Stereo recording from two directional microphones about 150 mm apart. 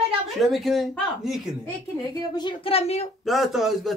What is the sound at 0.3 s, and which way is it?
Speech, centre (ahead or behind).